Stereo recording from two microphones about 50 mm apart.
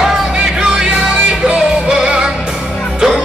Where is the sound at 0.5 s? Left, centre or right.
Centre.